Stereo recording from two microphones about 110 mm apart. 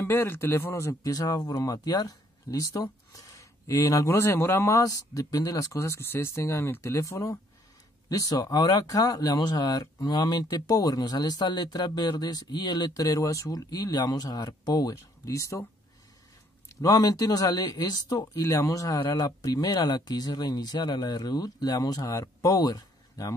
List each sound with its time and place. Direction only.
0.0 s speech: 20° left (ahead or behind)
16.8 s speech: 35° left (ahead or behind)